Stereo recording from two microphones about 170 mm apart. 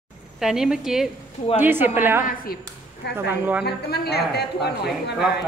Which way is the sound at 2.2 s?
60° left (ahead or behind).